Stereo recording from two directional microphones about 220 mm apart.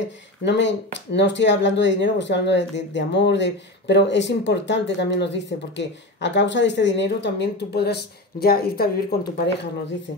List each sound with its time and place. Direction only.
0.5 s speech: 55° left (ahead or behind)